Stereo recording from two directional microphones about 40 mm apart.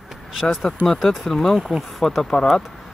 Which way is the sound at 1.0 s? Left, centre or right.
Centre.